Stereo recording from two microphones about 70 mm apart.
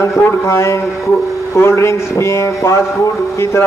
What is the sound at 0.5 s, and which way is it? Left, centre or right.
A man's voice, left.